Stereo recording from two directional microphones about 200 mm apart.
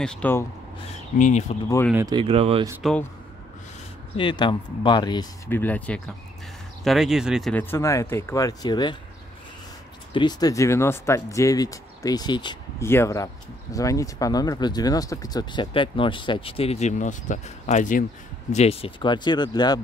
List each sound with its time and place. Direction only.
0.0 s speech: 5° left (ahead or behind)
1.1 s speech: 40° left (ahead or behind)
2.0 s speech: 20° right (ahead or behind)
2.2 s speech: 30° right (ahead or behind)
2.8 s speech: 5° left (ahead or behind)
4.2 s speech: 25° left (ahead or behind)
5.5 s speech: 10° left (ahead or behind)
7.7 s speech: 15° left (ahead or behind)
10.1 s speech: 20° left (ahead or behind)